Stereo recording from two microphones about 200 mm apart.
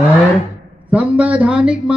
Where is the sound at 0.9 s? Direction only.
5° right (ahead or behind).